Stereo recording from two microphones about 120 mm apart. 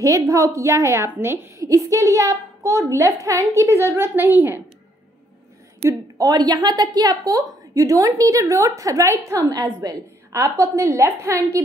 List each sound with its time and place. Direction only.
0.0 s a child's voice: 25° right (ahead or behind)
5.9 s a child's voice: 30° right (ahead or behind)